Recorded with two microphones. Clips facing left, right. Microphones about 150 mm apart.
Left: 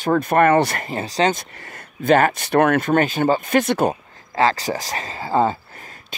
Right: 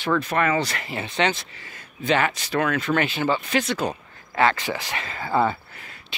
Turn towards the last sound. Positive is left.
turn(degrees=35)  # may be behind; listen again after turning